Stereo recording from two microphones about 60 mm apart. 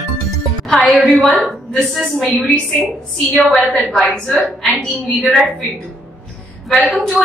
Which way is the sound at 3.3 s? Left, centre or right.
Centre.